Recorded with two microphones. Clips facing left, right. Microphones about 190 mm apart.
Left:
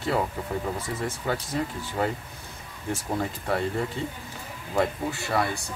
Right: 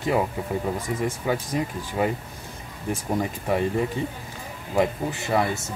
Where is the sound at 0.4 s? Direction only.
10° right (ahead or behind).